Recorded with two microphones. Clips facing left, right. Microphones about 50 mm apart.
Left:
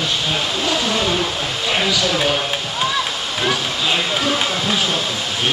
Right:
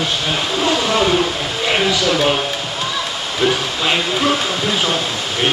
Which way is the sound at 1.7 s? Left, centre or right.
Centre.